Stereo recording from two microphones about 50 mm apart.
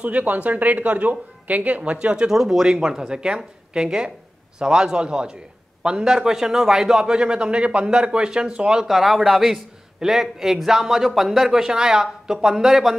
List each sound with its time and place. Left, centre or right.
0.0 s a man's voice: right
8.8 s a man's voice: centre